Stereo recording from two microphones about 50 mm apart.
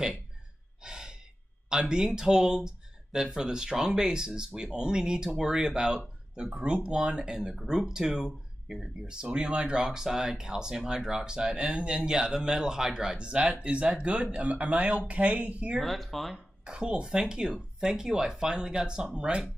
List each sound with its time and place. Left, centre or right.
0.8 s gasp: centre
1.7 s speech: centre
6.6 s speech: right
15.8 s speech: centre
16.6 s speech: right